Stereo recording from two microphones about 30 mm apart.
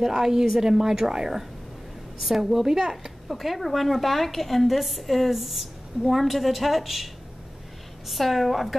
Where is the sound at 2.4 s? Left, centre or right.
Centre.